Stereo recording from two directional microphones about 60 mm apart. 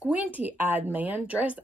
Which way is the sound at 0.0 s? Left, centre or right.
Right.